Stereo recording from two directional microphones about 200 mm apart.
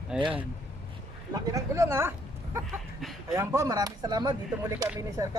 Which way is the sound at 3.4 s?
15° right (ahead or behind).